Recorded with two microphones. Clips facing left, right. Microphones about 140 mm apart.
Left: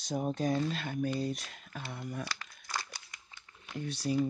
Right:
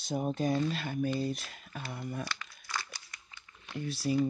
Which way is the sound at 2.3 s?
35° left (ahead or behind).